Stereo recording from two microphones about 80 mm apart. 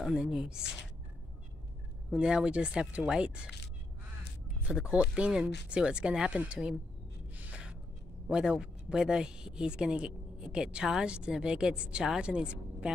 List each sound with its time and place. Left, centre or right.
0.0 s speech: centre
2.0 s speech: centre
4.6 s speech: centre
7.3 s a sound: centre
8.3 s speech: centre